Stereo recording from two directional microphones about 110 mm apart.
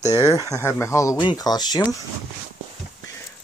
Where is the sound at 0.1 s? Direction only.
30° left (ahead or behind).